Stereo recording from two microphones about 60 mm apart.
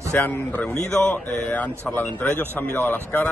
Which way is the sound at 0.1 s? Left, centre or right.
Left.